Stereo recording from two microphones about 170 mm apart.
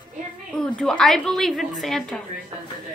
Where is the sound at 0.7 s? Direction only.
5° left (ahead or behind).